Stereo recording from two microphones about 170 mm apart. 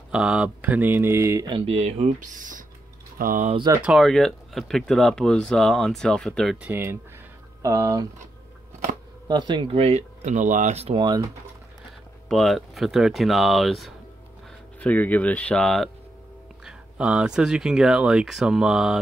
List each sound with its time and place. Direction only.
0.1 s speech: 5° right (ahead or behind)
1.7 s speech: 40° right (ahead or behind)
3.4 s speech: 30° right (ahead or behind)
3.8 s speech: centre (ahead or behind)
6.7 s speech: 15° right (ahead or behind)
9.3 s speech: 25° right (ahead or behind)
12.3 s speech: centre (ahead or behind)